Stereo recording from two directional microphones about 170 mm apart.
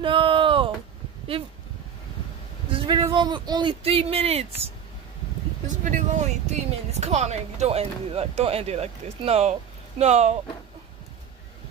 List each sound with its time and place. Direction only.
0.0 s a sound: 30° right (ahead or behind)
2.7 s speech: 30° right (ahead or behind)
5.9 s speech: 45° right (ahead or behind)